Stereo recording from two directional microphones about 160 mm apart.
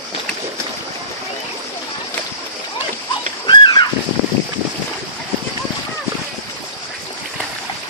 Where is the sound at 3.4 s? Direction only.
25° left (ahead or behind).